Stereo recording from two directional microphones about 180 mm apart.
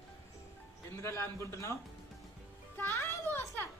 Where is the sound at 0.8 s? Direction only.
15° left (ahead or behind).